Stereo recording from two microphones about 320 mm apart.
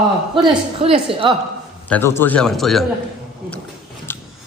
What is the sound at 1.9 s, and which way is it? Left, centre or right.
Speech, centre.